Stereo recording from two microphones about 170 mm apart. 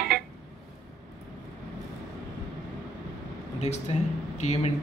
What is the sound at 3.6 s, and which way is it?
Speech, 40° left (ahead or behind).